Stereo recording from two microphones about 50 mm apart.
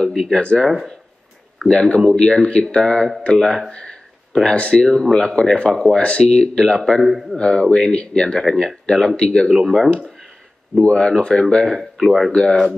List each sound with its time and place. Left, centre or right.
0.0 s speech: centre
4.8 s speech: centre
5.3 s speech: centre
7.1 s a man's voice: centre
7.3 s speech: centre
10.8 s speech: centre
12.3 s speech: centre